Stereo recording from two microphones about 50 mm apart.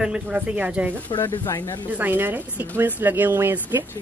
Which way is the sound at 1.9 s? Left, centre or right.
Right.